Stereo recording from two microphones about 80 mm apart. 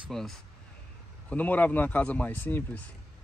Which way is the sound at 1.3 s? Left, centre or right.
Left.